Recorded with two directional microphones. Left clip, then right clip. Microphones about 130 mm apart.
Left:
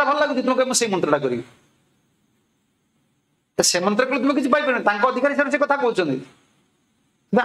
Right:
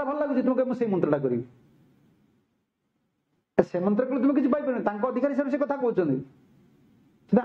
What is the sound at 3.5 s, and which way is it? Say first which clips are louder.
Speech: left 5 dB; 60° right (ahead or behind).